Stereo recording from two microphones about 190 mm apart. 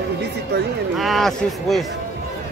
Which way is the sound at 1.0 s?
Centre (ahead or behind).